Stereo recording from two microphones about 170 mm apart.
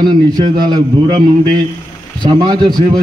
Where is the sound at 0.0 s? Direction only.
25° right (ahead or behind).